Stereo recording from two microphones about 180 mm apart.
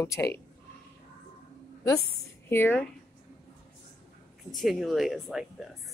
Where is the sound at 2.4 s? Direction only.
10° left (ahead or behind).